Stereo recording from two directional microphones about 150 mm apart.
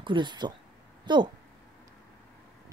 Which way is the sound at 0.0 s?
30° right (ahead or behind).